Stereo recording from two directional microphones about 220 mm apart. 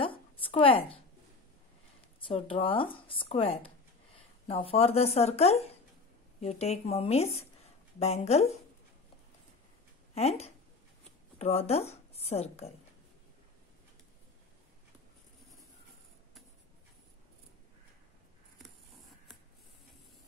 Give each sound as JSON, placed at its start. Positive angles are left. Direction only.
{"t": 0.0, "sound": "a sound", "side_deg": 25}
{"t": 2.1, "sound": "speech", "side_deg": 25}
{"t": 10.1, "sound": "speech", "side_deg": 30}